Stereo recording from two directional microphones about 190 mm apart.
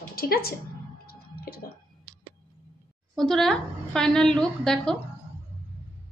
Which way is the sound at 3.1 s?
Centre (ahead or behind).